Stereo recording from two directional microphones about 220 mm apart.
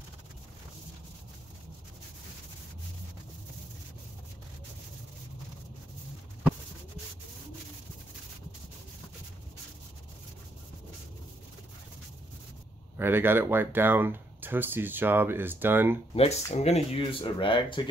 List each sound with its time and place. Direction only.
12.9 s speech: 10° right (ahead or behind)
16.2 s speech: 30° left (ahead or behind)